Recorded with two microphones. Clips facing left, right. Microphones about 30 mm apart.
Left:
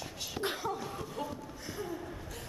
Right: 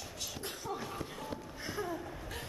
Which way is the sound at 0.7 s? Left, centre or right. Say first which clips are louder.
Left 2 dB; centre.